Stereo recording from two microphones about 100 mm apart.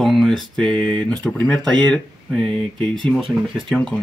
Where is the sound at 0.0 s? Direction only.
Centre (ahead or behind).